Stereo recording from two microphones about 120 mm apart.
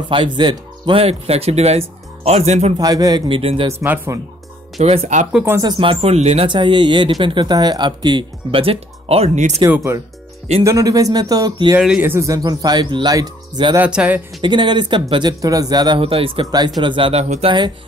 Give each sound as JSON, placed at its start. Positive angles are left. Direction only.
{"t": 0.1, "sound": "speech", "side_deg": -40}
{"t": 2.8, "sound": "speech", "side_deg": -30}
{"t": 3.3, "sound": "speech", "side_deg": -50}
{"t": 3.8, "sound": "speech", "side_deg": -15}
{"t": 4.7, "sound": "speech", "side_deg": -60}
{"t": 5.6, "sound": "speech", "side_deg": -40}
{"t": 6.4, "sound": "speech", "side_deg": -40}
{"t": 9.9, "sound": "speech", "side_deg": -25}
{"t": 12.0, "sound": "speech", "side_deg": -20}
{"t": 12.4, "sound": "speech", "side_deg": -35}
{"t": 13.7, "sound": "speech", "side_deg": -10}
{"t": 14.4, "sound": "speech", "side_deg": -40}
{"t": 16.0, "sound": "speech", "side_deg": -50}
{"t": 17.5, "sound": "speech", "side_deg": -40}